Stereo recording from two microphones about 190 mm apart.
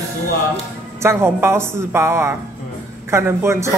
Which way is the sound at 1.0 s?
15° right (ahead or behind).